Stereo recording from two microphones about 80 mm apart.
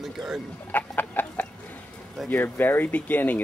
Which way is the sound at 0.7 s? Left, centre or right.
Left.